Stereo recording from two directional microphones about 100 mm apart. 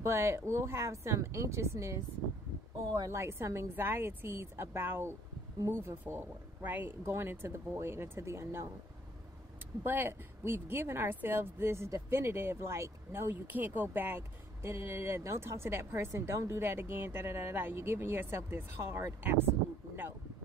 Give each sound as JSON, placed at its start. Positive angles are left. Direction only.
{"t": 0.0, "sound": "speech", "side_deg": -25}
{"t": 3.1, "sound": "speech", "side_deg": -25}
{"t": 9.8, "sound": "speech", "side_deg": -20}